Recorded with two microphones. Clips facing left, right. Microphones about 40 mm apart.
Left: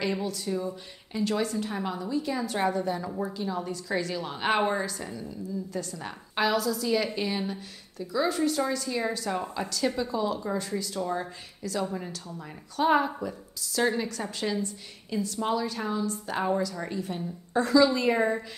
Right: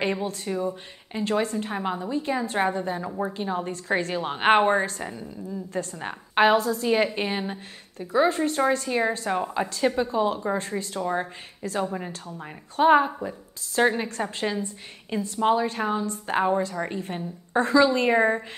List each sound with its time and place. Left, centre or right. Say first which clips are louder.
0.0 s a woman's voice: right 3 dB; right